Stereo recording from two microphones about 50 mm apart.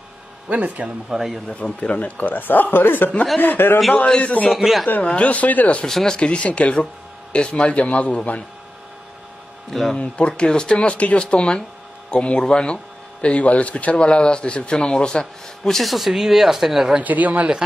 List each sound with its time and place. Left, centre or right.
0.5 s speech: right
1.1 s speech: centre
1.5 s a man's voice: left
3.9 s speech: left
4.6 s speech: centre
5.0 s speech: left
5.9 s speech: centre
6.1 s speech: left
9.7 s speech: centre
9.9 s speech: left; by 17.0 s centre
17.0 s speech: right